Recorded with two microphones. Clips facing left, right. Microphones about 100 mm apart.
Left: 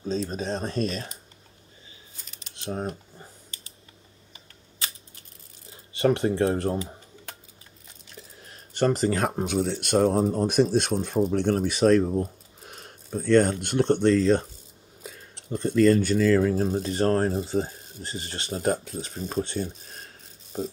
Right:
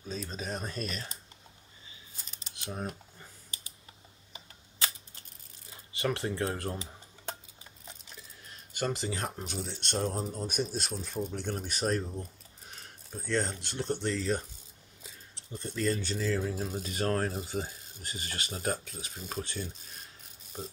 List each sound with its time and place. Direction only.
0.4 s speech: 30° left (ahead or behind)
2.6 s speech: 25° left (ahead or behind)
5.7 s speech: 25° left (ahead or behind)
8.2 s a sound: 40° left (ahead or behind); by 9.8 s 75° left (ahead or behind)
9.8 s speech: 90° left
15.0 s speech: 70° left (ahead or behind)
16.5 s speech: 40° left (ahead or behind)
19.5 s speech: 50° left (ahead or behind)